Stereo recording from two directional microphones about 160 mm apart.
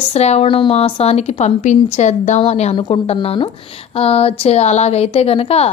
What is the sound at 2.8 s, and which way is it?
A woman's voice, 30° left (ahead or behind).